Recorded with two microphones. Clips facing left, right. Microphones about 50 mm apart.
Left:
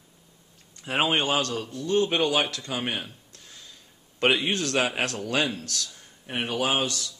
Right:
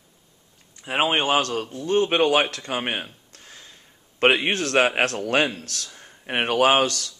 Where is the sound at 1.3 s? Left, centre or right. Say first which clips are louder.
Right 4 dB; right.